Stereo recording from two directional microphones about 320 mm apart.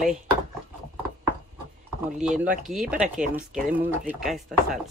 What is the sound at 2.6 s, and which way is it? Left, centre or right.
Speech, centre.